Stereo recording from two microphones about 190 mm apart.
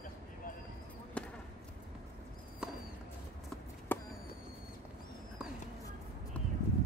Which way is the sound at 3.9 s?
10° left (ahead or behind).